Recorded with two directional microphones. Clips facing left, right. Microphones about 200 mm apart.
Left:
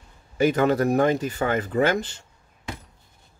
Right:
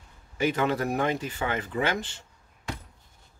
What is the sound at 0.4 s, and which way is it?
Speech, 45° left (ahead or behind).